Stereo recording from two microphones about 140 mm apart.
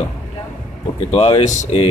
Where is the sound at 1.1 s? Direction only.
50° left (ahead or behind).